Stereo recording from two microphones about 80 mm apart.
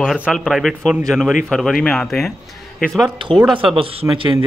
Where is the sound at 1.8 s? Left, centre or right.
Centre.